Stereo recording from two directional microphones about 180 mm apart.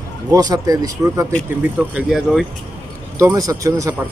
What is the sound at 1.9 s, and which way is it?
Speech, centre (ahead or behind).